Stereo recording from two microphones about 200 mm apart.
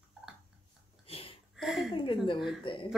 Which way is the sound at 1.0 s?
30° left (ahead or behind).